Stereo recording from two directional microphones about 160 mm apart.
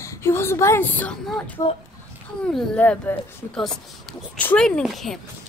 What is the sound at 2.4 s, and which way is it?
A child's voice, 10° left (ahead or behind).